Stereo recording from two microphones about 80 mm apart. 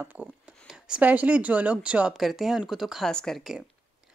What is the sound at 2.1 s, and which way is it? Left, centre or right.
Speech, centre.